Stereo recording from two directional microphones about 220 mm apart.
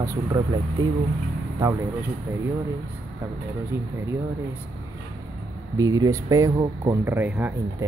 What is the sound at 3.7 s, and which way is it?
Speech, 10° right (ahead or behind).